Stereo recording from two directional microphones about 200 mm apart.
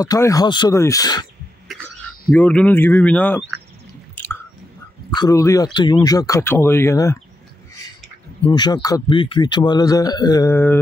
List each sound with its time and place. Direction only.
0.0 s speech: 15° left (ahead or behind)
1.7 s speech: 5° left (ahead or behind)
5.1 s speech: 20° left (ahead or behind)
8.5 s a man's voice: 20° left (ahead or behind)